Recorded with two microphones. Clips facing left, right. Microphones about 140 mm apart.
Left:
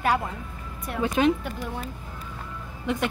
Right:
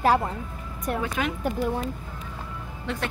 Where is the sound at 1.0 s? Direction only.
25° left (ahead or behind).